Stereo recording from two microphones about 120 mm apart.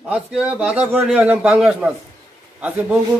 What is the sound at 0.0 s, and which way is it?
A man's voice, 5° right (ahead or behind).